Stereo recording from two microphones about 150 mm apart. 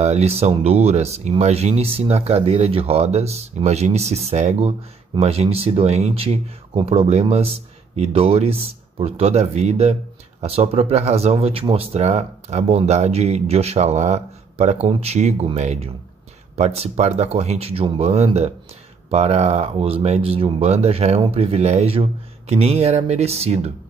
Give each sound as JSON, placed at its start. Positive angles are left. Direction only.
{"t": 0.0, "sound": "speech", "side_deg": -45}